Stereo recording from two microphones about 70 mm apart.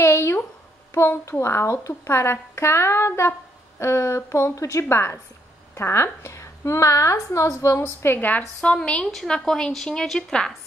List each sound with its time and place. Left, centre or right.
0.0 s a sound: left
0.9 s a woman's voice: left
1.4 s a woman's voice: left
7.8 s a woman's voice: left
8.5 s a woman's voice: centre